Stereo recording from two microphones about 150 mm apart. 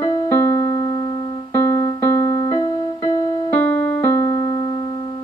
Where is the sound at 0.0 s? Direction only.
20° left (ahead or behind).